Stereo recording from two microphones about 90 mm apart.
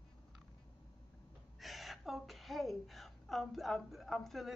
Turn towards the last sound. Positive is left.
turn(degrees=0)  # may be behind; listen again after turning